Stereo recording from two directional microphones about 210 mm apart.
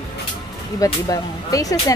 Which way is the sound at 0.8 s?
15° left (ahead or behind).